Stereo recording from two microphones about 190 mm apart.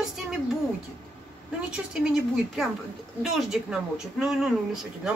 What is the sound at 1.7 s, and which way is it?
Speech, 5° right (ahead or behind).